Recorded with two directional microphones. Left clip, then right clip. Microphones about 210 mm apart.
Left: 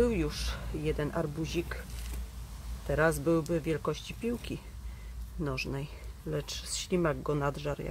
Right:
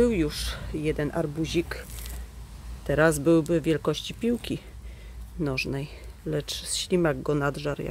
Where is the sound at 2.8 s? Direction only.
30° right (ahead or behind).